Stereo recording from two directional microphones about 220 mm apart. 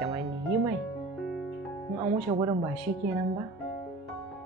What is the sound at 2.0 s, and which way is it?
Speech, 20° right (ahead or behind).